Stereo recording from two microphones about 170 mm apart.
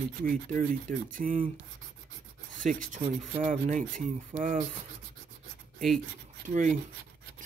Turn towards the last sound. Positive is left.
turn(degrees=-45)  # may be behind; listen again after turning